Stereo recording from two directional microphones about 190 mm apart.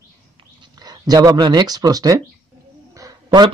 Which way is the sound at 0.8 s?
20° right (ahead or behind).